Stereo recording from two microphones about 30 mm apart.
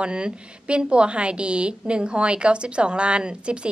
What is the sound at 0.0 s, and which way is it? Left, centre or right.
A woman's voice, right.